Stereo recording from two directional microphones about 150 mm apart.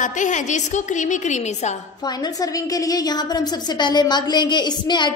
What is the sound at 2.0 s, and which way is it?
A woman's voice, 25° left (ahead or behind).